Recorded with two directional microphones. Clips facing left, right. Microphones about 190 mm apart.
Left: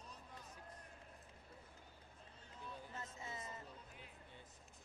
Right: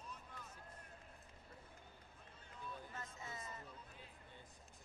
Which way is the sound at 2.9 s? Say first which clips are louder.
Left 1 dB; 20° left (ahead or behind).